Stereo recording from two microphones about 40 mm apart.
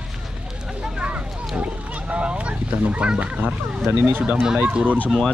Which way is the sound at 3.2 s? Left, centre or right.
Right.